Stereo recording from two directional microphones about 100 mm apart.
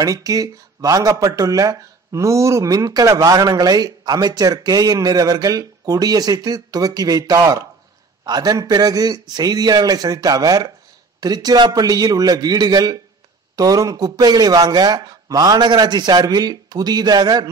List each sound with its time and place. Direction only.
0.0 s speech: 35° right (ahead or behind)